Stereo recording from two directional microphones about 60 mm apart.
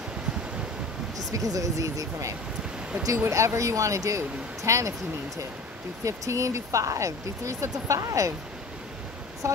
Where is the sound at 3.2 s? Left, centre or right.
Right.